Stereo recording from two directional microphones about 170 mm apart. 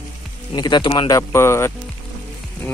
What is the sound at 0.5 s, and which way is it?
Speech, 25° left (ahead or behind).